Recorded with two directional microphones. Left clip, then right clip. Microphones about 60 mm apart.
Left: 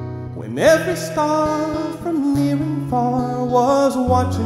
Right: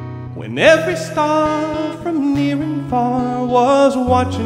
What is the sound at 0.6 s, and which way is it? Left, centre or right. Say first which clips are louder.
Music: right 3 dB; left.